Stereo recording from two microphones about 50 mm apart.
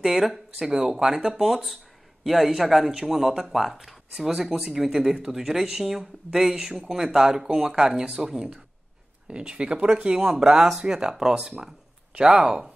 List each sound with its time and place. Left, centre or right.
0.0 s speech: centre
10.1 s speech: centre